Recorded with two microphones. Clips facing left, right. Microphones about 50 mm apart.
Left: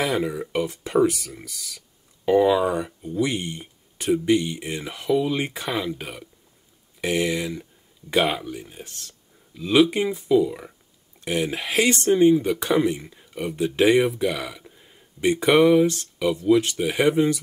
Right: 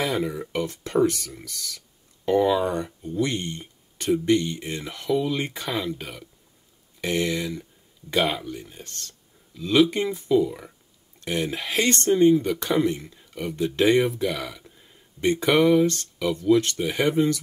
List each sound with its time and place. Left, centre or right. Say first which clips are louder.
0.0 s speech: left 2 dB; centre